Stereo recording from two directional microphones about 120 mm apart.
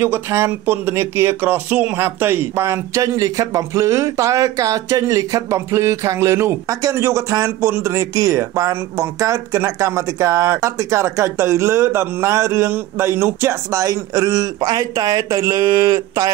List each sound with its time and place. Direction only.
0.0 s speech: 20° right (ahead or behind)